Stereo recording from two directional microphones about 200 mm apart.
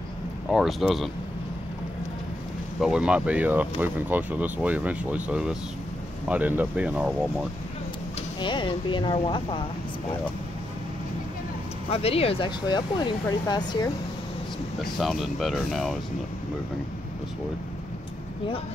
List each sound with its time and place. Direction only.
0.5 s speech: centre (ahead or behind)
2.8 s speech: 5° right (ahead or behind)
8.4 s speech: 25° left (ahead or behind)
11.9 s speech: 30° left (ahead or behind)
14.8 s speech: centre (ahead or behind)